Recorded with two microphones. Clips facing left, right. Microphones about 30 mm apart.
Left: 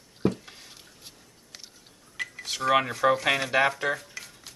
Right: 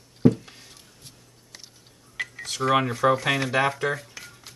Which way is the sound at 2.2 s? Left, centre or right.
Centre.